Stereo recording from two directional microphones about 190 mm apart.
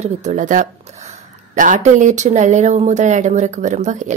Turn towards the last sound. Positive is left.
turn(degrees=-40)  # may be behind; listen again after turning